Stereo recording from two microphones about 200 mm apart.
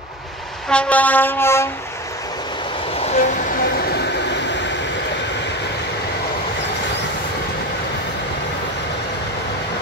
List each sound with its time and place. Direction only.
0.7 s train: 5° left (ahead or behind)
3.2 s train: 50° left (ahead or behind)